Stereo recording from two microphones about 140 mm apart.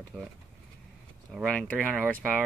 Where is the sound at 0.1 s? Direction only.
15° right (ahead or behind).